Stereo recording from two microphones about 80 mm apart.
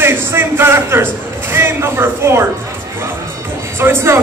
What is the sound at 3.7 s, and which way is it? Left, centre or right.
Speech, right.